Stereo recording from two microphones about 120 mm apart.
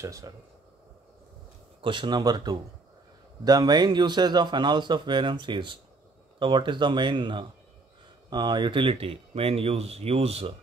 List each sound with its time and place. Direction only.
0.0 s speech: 25° right (ahead or behind)
1.8 s speech: 45° right (ahead or behind)